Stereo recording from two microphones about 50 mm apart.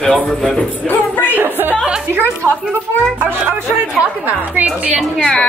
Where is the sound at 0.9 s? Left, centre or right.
Left.